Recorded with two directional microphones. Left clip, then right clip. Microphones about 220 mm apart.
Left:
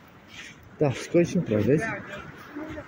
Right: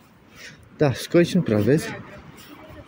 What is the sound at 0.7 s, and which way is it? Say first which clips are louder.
Speech: right 4 dB; 30° right (ahead or behind).